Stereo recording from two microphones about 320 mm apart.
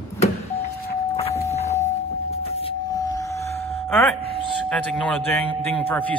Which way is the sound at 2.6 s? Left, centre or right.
Centre.